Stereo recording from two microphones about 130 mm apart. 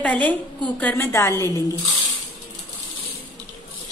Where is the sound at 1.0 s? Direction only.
20° left (ahead or behind).